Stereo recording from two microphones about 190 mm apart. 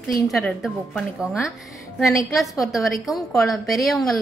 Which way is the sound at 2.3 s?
Centre (ahead or behind).